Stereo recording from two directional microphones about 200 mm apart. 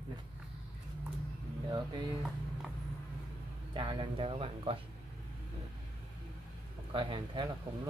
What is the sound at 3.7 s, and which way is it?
Speech, 25° right (ahead or behind).